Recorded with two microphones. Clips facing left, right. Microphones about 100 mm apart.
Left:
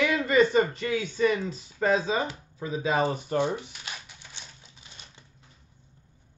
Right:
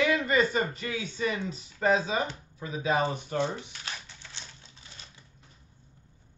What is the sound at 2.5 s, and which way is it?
Speech, 30° left (ahead or behind).